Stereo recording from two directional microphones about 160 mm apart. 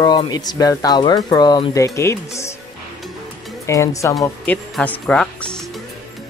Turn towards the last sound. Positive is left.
turn(degrees=5)  # may be behind; listen again after turning